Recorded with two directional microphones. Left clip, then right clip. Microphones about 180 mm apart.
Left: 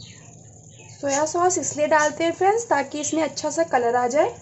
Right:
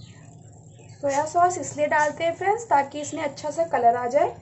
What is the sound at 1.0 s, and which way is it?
A woman's voice, 45° left (ahead or behind).